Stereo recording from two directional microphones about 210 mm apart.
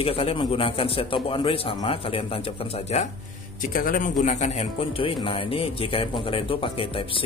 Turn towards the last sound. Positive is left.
turn(degrees=25)  # may be behind; listen again after turning